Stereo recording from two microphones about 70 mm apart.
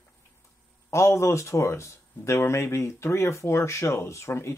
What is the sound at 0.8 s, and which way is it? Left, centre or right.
Speech, left.